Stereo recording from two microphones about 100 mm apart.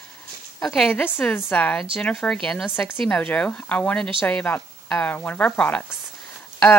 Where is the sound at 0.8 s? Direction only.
20° left (ahead or behind).